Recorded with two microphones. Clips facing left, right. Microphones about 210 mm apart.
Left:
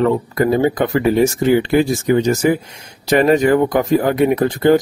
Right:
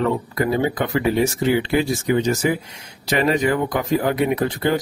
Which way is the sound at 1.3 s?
45° left (ahead or behind).